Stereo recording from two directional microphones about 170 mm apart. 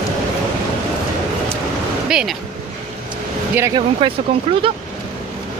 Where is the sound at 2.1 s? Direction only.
5° right (ahead or behind).